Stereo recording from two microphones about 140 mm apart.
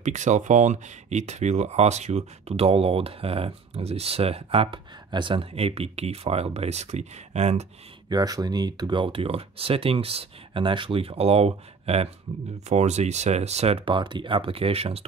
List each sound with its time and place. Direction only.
0.0 s speech: 60° right (ahead or behind)
8.1 s speech: 25° right (ahead or behind); by 15.0 s 45° right (ahead or behind)